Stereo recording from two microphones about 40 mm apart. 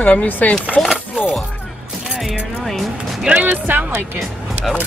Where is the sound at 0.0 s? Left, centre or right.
Left.